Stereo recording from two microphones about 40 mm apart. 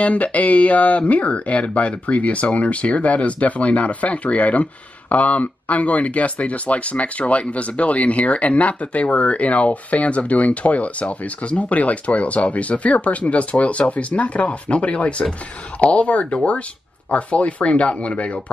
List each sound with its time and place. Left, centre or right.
0.0 s speech: left